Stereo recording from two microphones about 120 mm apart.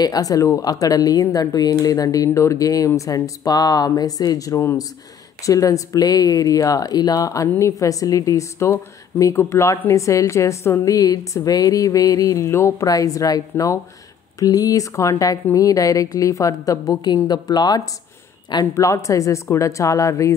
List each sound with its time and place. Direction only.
0.0 s a woman's voice: 30° left (ahead or behind)